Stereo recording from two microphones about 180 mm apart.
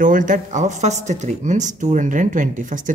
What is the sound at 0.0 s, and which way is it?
Speech, 45° right (ahead or behind).